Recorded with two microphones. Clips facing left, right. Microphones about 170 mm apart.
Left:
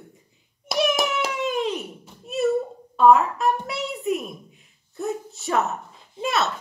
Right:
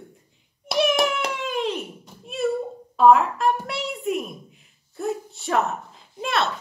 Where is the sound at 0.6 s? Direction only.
Centre (ahead or behind).